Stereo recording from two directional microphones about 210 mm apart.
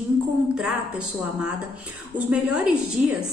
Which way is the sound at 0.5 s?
5° right (ahead or behind).